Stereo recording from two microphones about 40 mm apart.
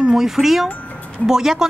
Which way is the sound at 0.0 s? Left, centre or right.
Centre.